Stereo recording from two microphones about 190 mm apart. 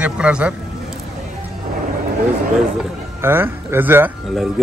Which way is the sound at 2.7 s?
10° right (ahead or behind).